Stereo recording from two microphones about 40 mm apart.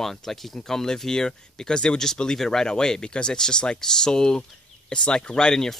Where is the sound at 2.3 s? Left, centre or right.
Centre.